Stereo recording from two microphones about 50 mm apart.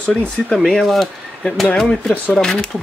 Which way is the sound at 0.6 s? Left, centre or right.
Centre.